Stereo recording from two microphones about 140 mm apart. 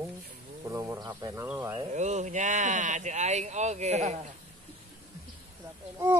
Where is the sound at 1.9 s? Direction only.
55° right (ahead or behind).